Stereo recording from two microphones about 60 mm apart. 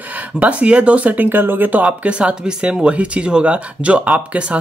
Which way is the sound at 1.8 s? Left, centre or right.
Centre.